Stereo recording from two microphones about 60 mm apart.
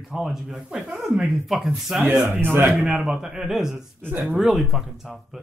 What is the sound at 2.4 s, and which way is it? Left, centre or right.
Speech, right.